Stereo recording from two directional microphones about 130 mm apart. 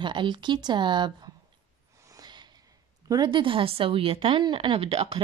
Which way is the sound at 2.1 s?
30° right (ahead or behind).